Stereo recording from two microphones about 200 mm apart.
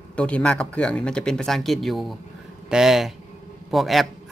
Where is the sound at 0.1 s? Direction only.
5° left (ahead or behind).